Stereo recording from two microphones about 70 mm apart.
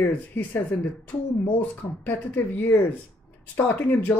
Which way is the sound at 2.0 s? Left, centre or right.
Left.